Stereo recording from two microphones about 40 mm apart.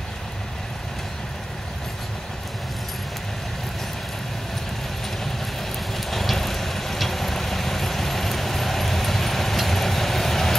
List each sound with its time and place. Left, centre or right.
5.9 s vehicle: centre